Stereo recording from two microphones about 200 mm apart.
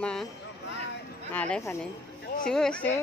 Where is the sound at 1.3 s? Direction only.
10° left (ahead or behind).